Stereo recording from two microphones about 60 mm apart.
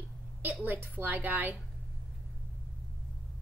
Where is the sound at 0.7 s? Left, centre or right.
Right.